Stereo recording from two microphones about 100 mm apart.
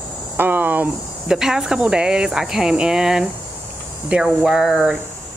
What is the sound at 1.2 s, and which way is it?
Speech, 5° right (ahead or behind).